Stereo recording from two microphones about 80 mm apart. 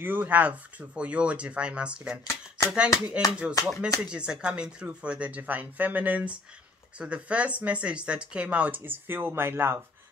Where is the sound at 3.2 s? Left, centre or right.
Centre.